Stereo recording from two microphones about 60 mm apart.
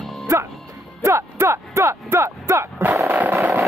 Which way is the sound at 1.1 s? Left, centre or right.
Right.